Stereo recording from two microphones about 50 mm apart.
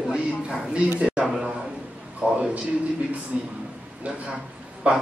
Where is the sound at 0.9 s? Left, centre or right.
Right.